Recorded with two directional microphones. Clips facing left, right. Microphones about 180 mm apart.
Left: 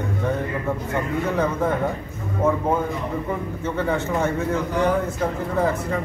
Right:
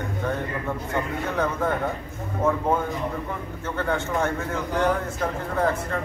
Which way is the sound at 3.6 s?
Centre (ahead or behind).